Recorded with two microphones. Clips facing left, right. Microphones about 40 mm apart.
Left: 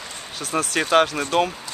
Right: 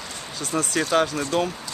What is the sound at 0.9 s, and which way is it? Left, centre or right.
Speech, left.